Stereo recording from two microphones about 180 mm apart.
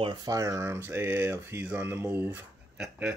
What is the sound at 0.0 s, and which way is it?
Speech, 25° right (ahead or behind).